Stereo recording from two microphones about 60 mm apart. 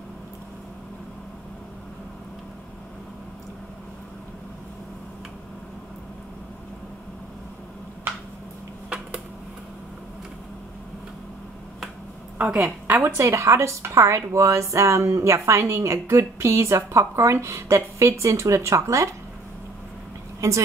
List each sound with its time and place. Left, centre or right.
12.8 s a woman's voice: right
13.2 s a woman's voice: right
20.3 s a woman's voice: right